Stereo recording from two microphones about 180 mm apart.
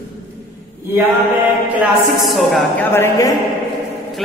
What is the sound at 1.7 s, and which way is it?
A woman's voice, 5° right (ahead or behind).